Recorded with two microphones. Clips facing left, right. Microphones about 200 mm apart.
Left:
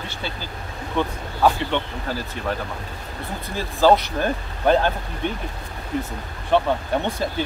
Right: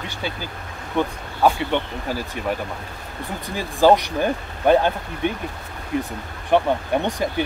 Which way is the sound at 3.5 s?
15° right (ahead or behind).